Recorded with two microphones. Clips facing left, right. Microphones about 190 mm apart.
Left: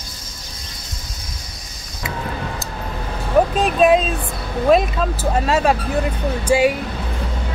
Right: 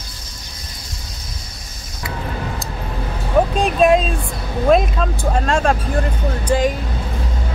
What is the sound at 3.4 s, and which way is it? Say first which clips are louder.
Speech: even; 5° left (ahead or behind).